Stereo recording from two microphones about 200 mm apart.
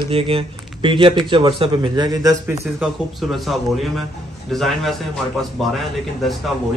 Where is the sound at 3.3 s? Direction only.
Centre (ahead or behind).